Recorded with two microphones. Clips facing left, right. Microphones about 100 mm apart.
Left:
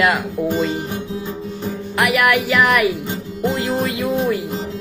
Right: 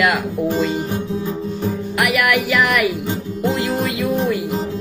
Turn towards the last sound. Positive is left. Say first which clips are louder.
# even
turn(degrees=30)  # may be behind; listen again after turning